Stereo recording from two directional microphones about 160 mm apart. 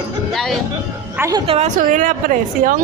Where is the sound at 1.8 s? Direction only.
55° right (ahead or behind).